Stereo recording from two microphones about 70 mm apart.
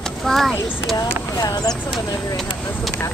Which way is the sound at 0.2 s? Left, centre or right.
Centre.